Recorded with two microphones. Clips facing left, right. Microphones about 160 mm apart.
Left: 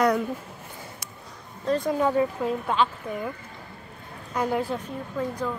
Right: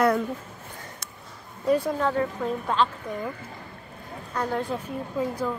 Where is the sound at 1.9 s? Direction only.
10° left (ahead or behind).